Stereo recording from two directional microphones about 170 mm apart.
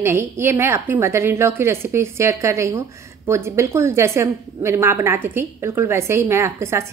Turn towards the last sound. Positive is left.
turn(degrees=-15)  # may be behind; listen again after turning